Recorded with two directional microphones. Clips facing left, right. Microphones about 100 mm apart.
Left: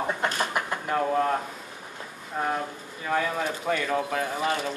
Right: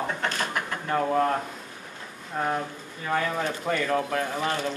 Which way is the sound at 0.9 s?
Centre (ahead or behind).